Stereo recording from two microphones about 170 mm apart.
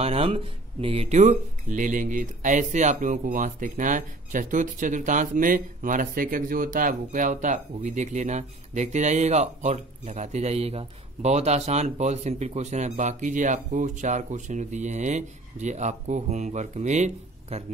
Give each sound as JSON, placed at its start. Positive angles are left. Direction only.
{"t": 0.0, "sound": "speech", "side_deg": -35}